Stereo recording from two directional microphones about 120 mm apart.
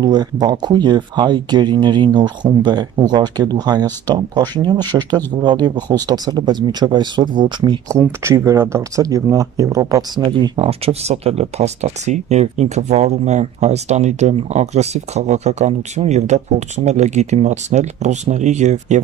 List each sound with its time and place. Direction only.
0.0 s speech: 35° right (ahead or behind)
8.0 s speech: 20° right (ahead or behind)
10.2 s speech: 40° right (ahead or behind)
10.6 s speech: 55° right (ahead or behind); by 18.9 s 75° right (ahead or behind)